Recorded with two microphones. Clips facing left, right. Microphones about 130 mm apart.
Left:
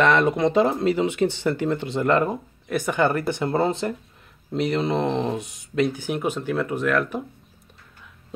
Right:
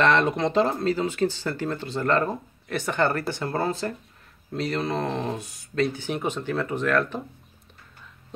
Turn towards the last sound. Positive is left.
turn(degrees=10)  # may be behind; listen again after turning